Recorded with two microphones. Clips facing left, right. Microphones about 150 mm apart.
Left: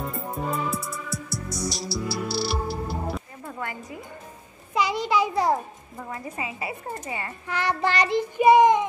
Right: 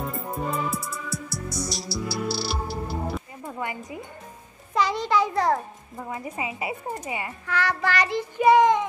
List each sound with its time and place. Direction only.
0.0 s music: centre (ahead or behind)
3.4 s a sound: 15° right (ahead or behind)
4.7 s a child's voice: 10° left (ahead or behind)
5.9 s a woman's voice: 15° right (ahead or behind)
7.4 s child singing: 20° left (ahead or behind)